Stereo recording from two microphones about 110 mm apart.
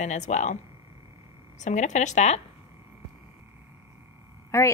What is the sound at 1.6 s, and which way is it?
Speech, 90° left.